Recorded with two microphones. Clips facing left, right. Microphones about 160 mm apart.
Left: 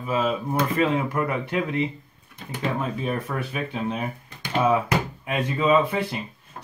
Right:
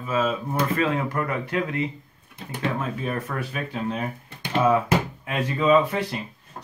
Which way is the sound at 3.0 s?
15° left (ahead or behind).